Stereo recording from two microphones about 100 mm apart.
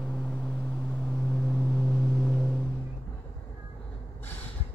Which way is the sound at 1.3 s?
Centre (ahead or behind).